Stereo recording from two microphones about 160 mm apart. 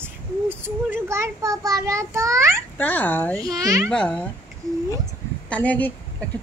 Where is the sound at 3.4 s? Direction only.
20° right (ahead or behind).